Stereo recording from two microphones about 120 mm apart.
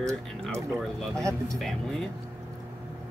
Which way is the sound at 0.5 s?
25° right (ahead or behind).